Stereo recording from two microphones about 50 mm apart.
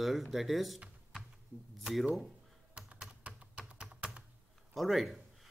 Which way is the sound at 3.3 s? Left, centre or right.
Right.